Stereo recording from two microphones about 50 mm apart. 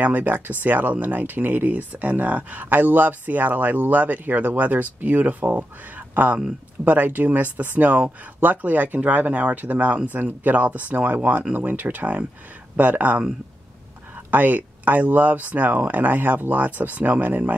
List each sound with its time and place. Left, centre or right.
0.0 s speech: right